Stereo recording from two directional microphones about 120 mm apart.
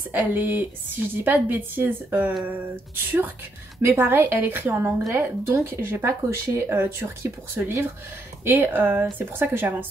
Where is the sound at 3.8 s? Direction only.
20° right (ahead or behind).